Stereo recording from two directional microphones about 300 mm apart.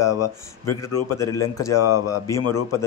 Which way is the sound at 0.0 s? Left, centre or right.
Left.